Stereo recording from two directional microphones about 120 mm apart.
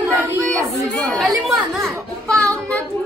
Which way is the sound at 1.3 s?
25° right (ahead or behind).